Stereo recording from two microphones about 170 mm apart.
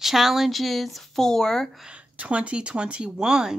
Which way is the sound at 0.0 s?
Centre (ahead or behind).